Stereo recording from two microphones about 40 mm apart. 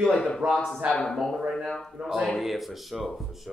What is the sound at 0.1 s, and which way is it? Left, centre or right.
Speech, left.